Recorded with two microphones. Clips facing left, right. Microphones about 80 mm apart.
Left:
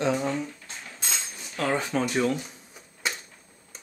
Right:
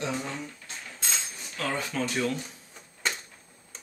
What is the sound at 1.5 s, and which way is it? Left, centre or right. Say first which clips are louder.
Typewriter: left 5 dB; left.